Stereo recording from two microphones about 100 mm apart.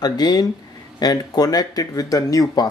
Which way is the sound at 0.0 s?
40° left (ahead or behind).